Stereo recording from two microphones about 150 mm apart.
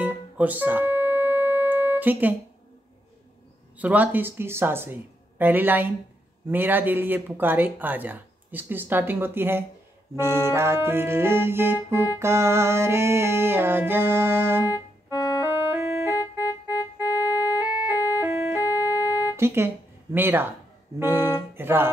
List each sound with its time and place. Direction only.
0.0 s music: 10° right (ahead or behind)
3.7 s speech: 10° right (ahead or behind)
14.7 s keyboard: 25° left (ahead or behind)
15.5 s music: 15° right (ahead or behind)
16.2 s keyboard: 25° left (ahead or behind)
17.6 s music: 10° right (ahead or behind)
18.6 s music: 25° left (ahead or behind)
19.3 s music: 15° right (ahead or behind)
21.0 s speech: 15° right (ahead or behind)